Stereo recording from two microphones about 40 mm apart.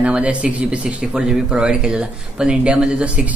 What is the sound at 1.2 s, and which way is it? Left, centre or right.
Speech, centre.